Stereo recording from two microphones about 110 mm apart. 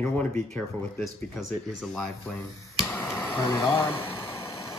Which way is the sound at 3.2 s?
20° left (ahead or behind).